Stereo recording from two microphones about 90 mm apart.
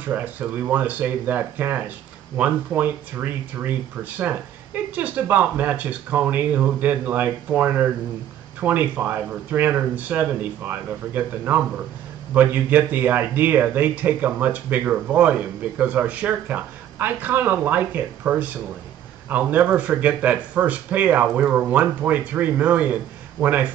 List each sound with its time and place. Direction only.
0.0 s speech: 20° right (ahead or behind)